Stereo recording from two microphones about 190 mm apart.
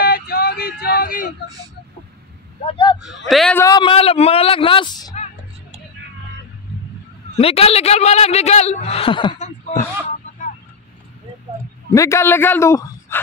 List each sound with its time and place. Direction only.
0.0 s a sound: 55° left (ahead or behind)
2.6 s a man's voice: 25° left (ahead or behind)
3.3 s a man's voice: centre (ahead or behind)
3.5 s a man's voice: 20° left (ahead or behind)
7.3 s a man's voice: 30° left (ahead or behind)
11.9 s a man's voice: 15° left (ahead or behind)